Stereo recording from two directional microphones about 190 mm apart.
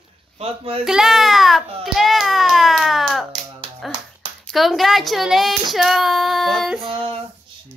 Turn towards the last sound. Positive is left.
turn(degrees=0)  # may be behind; listen again after turning